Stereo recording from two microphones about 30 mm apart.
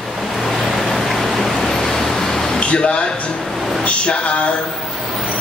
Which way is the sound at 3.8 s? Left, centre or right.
Left.